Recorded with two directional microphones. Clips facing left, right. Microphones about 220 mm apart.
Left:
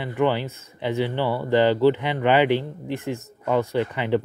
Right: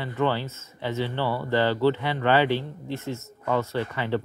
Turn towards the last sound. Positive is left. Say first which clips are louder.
# left 4 dB
turn(degrees=15)  # may be behind; listen again after turning